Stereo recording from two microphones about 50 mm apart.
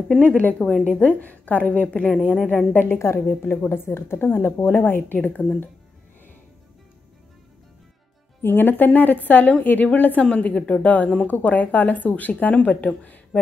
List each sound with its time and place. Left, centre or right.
0.4 s a woman's voice: left
2.7 s a woman's voice: left
8.4 s speech: left
10.2 s a woman's voice: left